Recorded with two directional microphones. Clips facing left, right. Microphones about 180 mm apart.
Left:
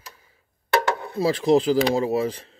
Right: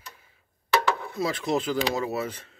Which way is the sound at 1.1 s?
30° left (ahead or behind).